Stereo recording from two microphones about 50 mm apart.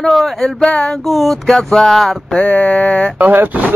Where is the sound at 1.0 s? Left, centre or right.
Centre.